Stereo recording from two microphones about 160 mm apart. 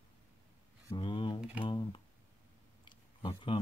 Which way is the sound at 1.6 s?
30° left (ahead or behind).